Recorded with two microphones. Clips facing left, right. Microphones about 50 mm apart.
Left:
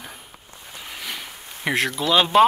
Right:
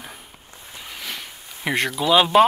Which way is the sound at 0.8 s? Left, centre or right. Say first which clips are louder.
Even; centre.